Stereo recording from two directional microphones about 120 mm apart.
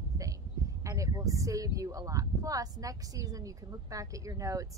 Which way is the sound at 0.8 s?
25° right (ahead or behind).